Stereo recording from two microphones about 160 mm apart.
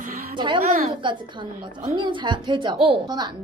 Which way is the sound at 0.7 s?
40° right (ahead or behind).